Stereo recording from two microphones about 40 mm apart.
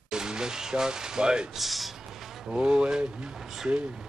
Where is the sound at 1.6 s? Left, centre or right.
Centre.